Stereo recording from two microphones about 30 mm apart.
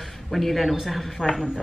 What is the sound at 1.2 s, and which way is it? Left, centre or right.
Speech, right.